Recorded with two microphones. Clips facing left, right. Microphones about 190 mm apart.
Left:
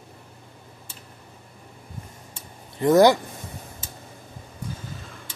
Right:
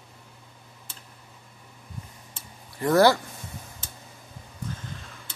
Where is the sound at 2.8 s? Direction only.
20° left (ahead or behind).